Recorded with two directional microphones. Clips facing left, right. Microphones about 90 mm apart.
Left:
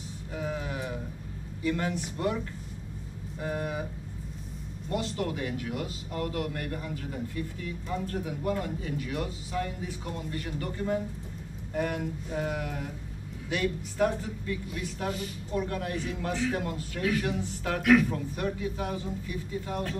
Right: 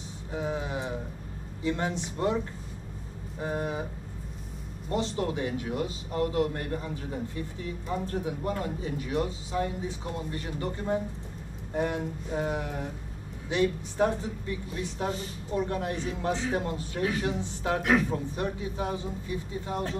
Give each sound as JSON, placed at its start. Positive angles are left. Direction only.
{"t": 0.3, "sound": "speech", "side_deg": -20}
{"t": 3.3, "sound": "speech", "side_deg": -25}
{"t": 4.8, "sound": "speech", "side_deg": -25}